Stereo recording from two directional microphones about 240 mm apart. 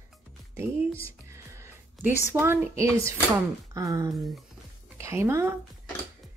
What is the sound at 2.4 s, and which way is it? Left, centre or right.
A woman's voice, centre.